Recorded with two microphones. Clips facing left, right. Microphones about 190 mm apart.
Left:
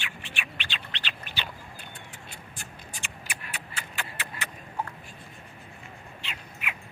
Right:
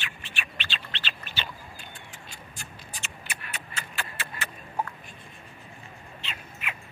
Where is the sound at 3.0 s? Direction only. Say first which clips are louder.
Even; 10° left (ahead or behind).